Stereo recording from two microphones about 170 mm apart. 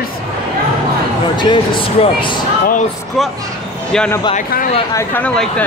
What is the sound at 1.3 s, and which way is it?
Speech, 30° left (ahead or behind).